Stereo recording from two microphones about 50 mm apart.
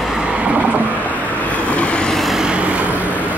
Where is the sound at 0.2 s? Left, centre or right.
Right.